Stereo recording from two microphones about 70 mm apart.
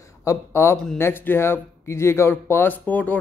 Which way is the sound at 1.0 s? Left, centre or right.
Left.